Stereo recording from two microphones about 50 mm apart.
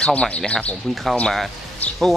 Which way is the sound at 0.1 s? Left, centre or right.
Left.